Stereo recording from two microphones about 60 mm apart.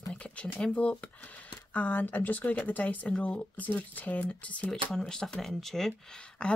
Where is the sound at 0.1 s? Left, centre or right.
Centre.